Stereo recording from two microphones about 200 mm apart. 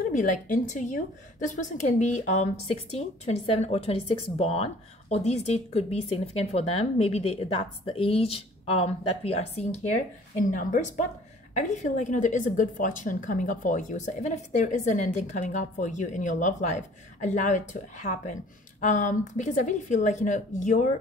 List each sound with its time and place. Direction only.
0.1 s a woman's voice: 40° left (ahead or behind)